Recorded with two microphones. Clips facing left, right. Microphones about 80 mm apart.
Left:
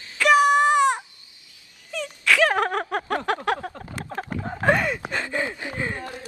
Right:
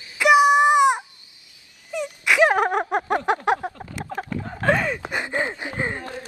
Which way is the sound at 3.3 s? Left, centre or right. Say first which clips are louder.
Right 3 dB; right.